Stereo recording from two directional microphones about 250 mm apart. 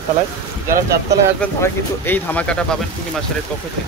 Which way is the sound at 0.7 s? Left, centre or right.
Right.